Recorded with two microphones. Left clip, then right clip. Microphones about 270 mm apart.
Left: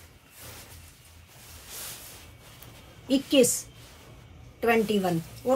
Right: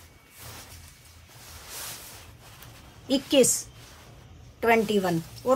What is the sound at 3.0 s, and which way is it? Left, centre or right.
Speech, centre.